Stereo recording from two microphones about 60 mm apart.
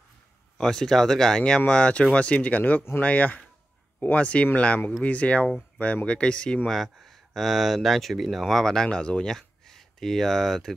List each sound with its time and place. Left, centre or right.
0.6 s speech: centre
6.7 s speech: centre